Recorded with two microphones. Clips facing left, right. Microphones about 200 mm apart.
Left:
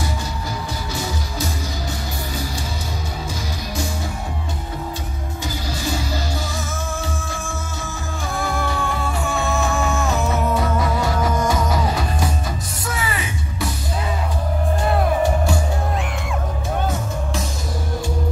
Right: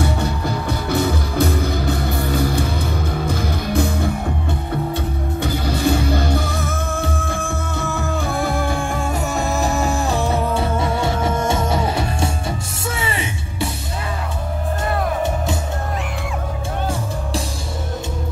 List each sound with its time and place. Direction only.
0.0 s music: 60° right (ahead or behind)
5.4 s music: 60° right (ahead or behind); by 13.7 s 25° right (ahead or behind)
15.2 s music: 20° right (ahead or behind)